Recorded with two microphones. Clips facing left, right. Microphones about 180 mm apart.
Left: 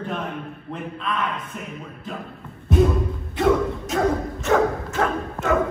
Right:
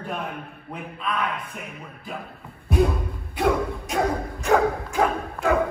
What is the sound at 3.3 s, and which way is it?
Bow-wow, centre (ahead or behind).